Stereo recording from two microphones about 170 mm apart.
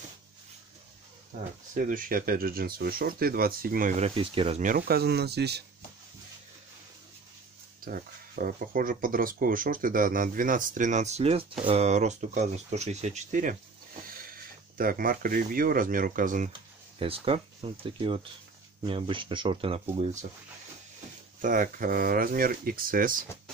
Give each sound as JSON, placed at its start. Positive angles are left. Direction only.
{"t": 1.3, "sound": "speech", "side_deg": -45}
{"t": 4.6, "sound": "speech", "side_deg": -55}
{"t": 7.8, "sound": "speech", "side_deg": -55}
{"t": 14.8, "sound": "speech", "side_deg": -55}
{"t": 17.0, "sound": "speech", "side_deg": -35}
{"t": 21.4, "sound": "speech", "side_deg": -50}